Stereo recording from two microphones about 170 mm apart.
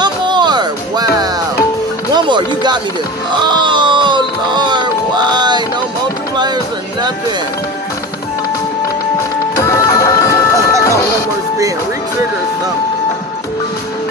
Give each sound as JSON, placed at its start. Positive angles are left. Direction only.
{"t": 0.0, "sound": "music", "side_deg": -25}
{"t": 3.3, "sound": "a sound", "side_deg": -25}
{"t": 6.3, "sound": "music", "side_deg": -25}
{"t": 9.6, "sound": "music", "side_deg": 20}